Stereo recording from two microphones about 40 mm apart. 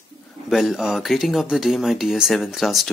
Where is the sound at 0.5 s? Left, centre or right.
Centre.